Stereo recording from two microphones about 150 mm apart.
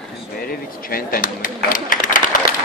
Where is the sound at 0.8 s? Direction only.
75° left (ahead or behind).